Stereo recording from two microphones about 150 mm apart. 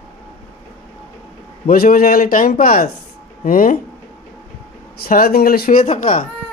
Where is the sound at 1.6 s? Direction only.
80° left.